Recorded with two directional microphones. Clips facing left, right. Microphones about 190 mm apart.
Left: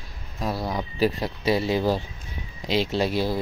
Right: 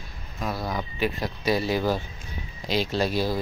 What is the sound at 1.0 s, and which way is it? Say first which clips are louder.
Speech: left 6 dB; 35° left (ahead or behind).